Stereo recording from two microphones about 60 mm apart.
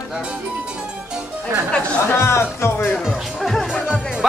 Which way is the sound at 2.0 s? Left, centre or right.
Left.